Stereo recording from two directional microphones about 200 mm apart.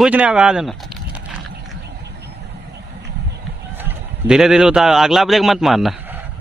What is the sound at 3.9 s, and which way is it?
Speech, 5° right (ahead or behind).